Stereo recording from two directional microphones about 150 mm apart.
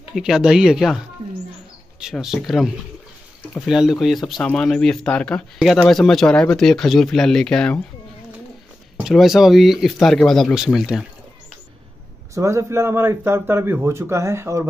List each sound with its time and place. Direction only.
0.1 s speech: 5° right (ahead or behind)
8.9 s speech: centre (ahead or behind)
12.4 s a man's voice: 20° right (ahead or behind)